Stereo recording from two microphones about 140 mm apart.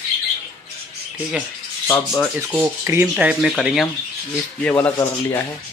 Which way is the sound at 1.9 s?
10° left (ahead or behind).